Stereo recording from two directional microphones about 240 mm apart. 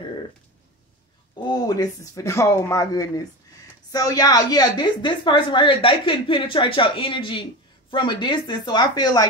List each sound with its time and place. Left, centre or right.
1.3 s a woman's voice: centre